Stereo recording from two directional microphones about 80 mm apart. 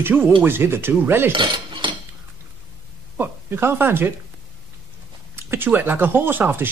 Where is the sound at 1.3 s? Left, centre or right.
Right.